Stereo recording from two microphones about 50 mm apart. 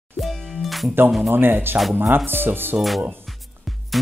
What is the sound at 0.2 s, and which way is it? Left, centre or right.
Music, centre.